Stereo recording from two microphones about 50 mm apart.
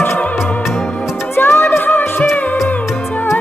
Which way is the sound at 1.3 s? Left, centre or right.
Left.